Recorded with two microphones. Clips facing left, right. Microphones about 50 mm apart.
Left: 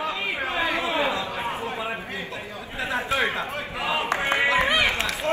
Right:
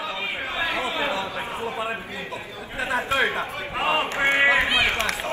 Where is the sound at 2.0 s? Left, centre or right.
Left.